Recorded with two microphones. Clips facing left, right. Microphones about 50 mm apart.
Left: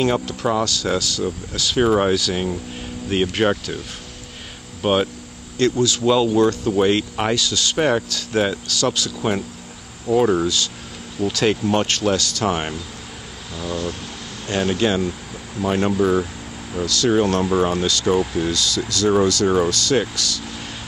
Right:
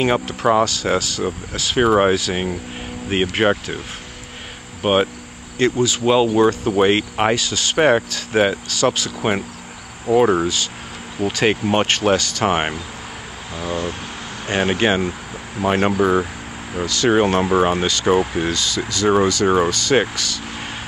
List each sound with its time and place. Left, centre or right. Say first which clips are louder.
0.0 s speech: right 2 dB; right
4.8 s speech: right 2 dB; right